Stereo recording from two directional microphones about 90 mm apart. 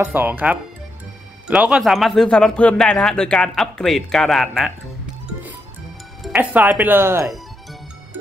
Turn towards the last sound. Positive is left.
turn(degrees=-30)  # may be behind; listen again after turning